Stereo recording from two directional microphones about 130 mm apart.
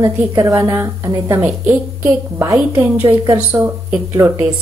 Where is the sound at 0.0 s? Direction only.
25° right (ahead or behind).